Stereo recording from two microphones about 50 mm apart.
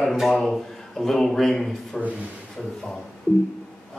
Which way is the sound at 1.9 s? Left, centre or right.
Centre.